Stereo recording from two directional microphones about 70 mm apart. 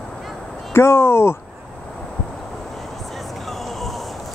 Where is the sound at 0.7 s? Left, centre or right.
Left.